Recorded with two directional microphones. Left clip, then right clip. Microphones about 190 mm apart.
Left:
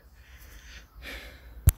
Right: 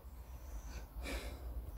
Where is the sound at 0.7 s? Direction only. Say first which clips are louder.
Left 5 dB; centre (ahead or behind).